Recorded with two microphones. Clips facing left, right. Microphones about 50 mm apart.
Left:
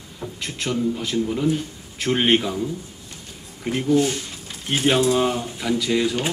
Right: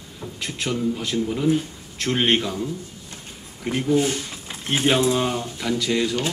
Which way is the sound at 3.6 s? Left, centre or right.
Centre.